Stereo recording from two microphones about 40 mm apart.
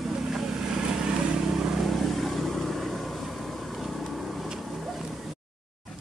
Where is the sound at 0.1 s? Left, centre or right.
Centre.